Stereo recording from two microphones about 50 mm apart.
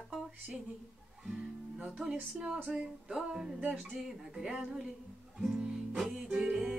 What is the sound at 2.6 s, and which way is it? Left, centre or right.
Music, right.